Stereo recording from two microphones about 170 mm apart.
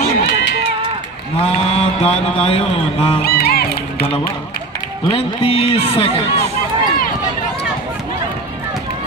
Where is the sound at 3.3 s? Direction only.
65° left (ahead or behind).